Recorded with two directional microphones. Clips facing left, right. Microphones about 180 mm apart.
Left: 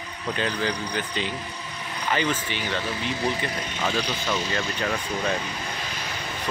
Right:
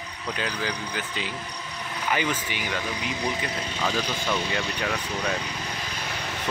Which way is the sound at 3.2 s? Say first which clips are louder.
Left 2 dB; centre (ahead or behind).